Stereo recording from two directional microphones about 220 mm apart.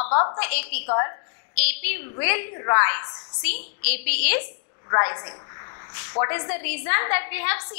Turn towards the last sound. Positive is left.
turn(degrees=15)  # may be behind; listen again after turning